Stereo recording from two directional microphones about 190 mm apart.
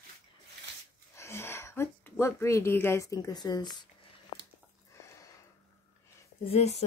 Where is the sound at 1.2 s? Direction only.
15° left (ahead or behind).